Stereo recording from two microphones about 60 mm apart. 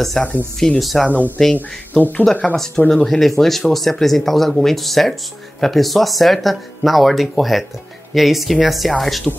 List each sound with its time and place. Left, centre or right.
0.2 s speech: centre
2.0 s speech: left
2.5 s speech: centre